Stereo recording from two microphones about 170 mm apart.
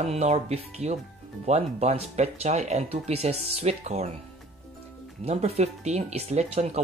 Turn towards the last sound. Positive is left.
turn(degrees=-40)  # may be behind; listen again after turning